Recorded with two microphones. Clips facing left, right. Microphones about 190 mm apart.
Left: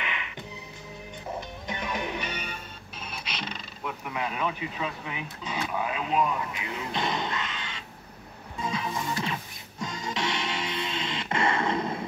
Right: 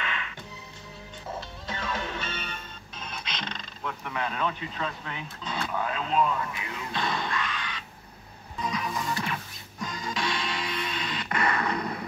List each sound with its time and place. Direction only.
0.0 s music: 15° left (ahead or behind)
1.7 s music: 15° left (ahead or behind)